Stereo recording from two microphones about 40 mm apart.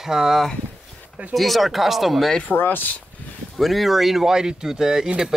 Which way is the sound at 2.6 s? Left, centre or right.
Left.